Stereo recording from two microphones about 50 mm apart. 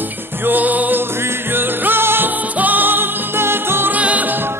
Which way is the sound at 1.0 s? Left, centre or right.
Right.